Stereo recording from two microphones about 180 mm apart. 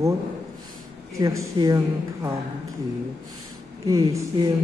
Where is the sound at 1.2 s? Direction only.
20° right (ahead or behind).